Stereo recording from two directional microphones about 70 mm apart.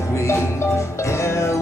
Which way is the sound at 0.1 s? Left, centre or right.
Left.